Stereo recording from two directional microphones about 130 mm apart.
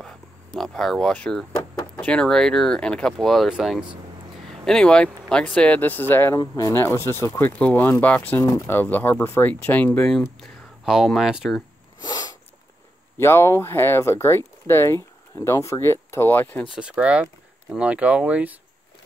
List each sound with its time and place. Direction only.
0.0 s speech: 5° left (ahead or behind)
6.4 s speech: 30° left (ahead or behind); by 11.6 s 5° right (ahead or behind)
12.0 s sneeze: 30° left (ahead or behind)
13.2 s speech: 20° left (ahead or behind)
16.7 s speech: 10° right (ahead or behind)